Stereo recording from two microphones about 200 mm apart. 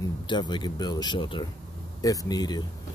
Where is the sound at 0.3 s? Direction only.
20° left (ahead or behind).